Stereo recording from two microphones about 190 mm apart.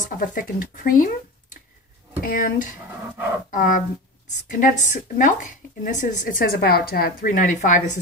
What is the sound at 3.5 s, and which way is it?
Speech, 45° left (ahead or behind).